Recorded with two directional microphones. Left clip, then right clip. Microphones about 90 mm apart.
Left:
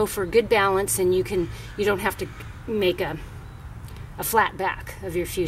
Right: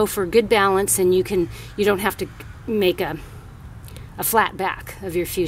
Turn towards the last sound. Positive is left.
turn(degrees=-20)  # may be behind; listen again after turning